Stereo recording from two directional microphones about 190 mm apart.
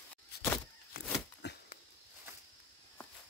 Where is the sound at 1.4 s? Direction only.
65° left (ahead or behind).